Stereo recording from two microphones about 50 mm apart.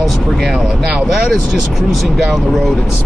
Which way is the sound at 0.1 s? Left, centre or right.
Centre.